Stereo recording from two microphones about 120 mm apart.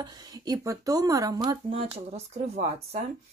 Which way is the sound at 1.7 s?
55° right (ahead or behind).